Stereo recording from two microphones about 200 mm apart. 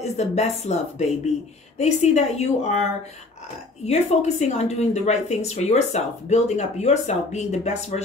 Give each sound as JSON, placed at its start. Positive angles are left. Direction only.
{"t": 0.0, "sound": "a woman's voice", "side_deg": 35}
{"t": 3.8, "sound": "a woman's voice", "side_deg": 35}